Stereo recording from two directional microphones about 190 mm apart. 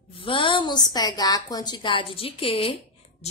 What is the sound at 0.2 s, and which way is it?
A woman's voice, 25° left (ahead or behind).